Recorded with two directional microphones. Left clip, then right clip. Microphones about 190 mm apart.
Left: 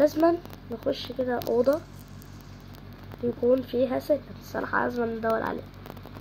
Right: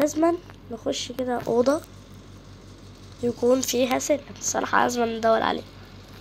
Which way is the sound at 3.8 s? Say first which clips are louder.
Right 2 dB; 25° right (ahead or behind).